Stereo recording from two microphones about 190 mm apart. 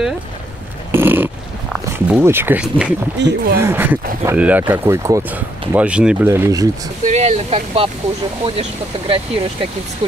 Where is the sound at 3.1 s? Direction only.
65° right (ahead or behind).